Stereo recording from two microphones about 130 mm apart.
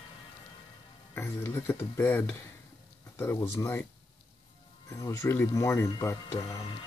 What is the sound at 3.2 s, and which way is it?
Speech, 15° left (ahead or behind).